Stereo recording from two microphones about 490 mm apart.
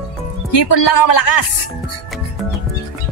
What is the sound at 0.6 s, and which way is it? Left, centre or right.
Speech, left.